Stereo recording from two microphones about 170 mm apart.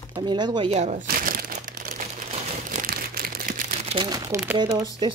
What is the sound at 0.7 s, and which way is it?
Crumpling, 50° right (ahead or behind).